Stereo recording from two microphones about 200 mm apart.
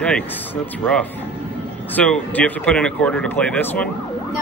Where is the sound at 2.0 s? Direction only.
5° left (ahead or behind).